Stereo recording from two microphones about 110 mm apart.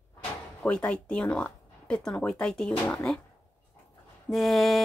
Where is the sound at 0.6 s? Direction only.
10° left (ahead or behind).